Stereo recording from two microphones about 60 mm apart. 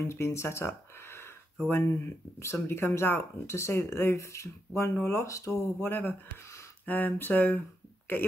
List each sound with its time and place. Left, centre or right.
0.0 s speech: left
5.5 s speech: left